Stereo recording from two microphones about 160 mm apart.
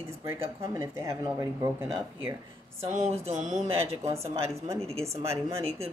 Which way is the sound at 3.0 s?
45° right (ahead or behind).